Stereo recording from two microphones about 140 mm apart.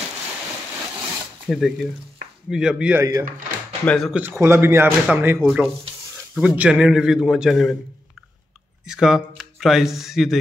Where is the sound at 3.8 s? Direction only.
5° left (ahead or behind).